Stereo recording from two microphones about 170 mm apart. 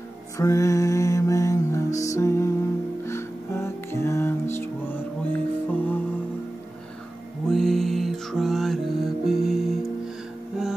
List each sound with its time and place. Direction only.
0.4 s music: 20° left (ahead or behind)
7.4 s music: centre (ahead or behind)